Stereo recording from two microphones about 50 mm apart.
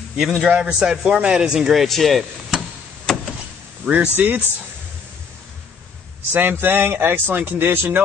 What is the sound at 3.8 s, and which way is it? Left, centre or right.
Speech, right.